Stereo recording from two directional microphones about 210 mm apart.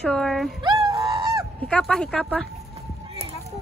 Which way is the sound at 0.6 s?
20° right (ahead or behind).